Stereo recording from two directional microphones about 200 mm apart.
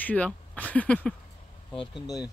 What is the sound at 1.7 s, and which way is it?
Speech, 25° left (ahead or behind).